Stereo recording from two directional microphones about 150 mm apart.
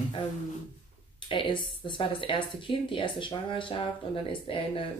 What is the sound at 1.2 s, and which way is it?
Speech, 35° left (ahead or behind).